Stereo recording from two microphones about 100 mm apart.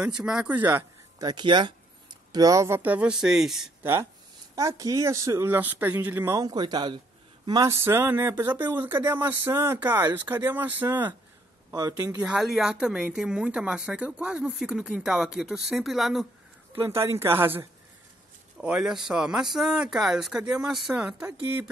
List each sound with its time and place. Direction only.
0.0 s speech: 10° right (ahead or behind)
0.6 s speech: 20° right (ahead or behind)
1.2 s a man's voice: 50° right (ahead or behind)
2.3 s speech: 35° right (ahead or behind)
2.8 s speech: 15° right (ahead or behind)
3.8 s speech: 20° right (ahead or behind)
4.6 s speech: 35° right (ahead or behind)
6.3 s a man's voice: 40° right (ahead or behind)
7.8 s speech: 25° right (ahead or behind)
11.7 s speech: 40° right (ahead or behind)
12.2 s speech: 5° right (ahead or behind)
16.7 s speech: 25° right (ahead or behind)
18.6 s speech: 5° right (ahead or behind)